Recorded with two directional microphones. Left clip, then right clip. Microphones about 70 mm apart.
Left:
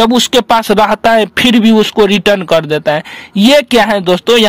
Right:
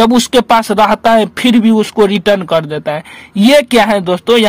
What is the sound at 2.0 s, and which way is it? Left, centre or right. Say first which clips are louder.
Speech: left 2 dB; left.